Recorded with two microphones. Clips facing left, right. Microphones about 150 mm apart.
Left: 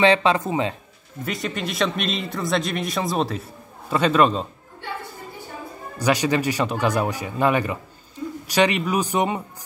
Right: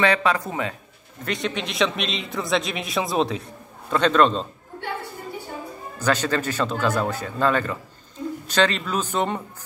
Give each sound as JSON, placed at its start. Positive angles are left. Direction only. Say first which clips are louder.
{"t": 0.0, "sound": "speech", "louder": "left 3 dB", "side_deg": 25}
{"t": 1.2, "sound": "a man's voice", "louder": "even", "side_deg": 0}
{"t": 5.9, "sound": "speech", "louder": "left 2 dB", "side_deg": 10}